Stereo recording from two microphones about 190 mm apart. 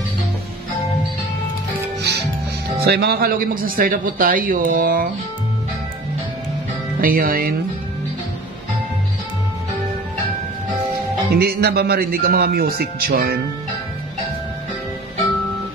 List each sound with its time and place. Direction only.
2.0 s music: 65° right (ahead or behind)
2.8 s a man's voice: 55° right (ahead or behind)
7.0 s a man's voice: 50° right (ahead or behind)
11.3 s a man's voice: 55° right (ahead or behind)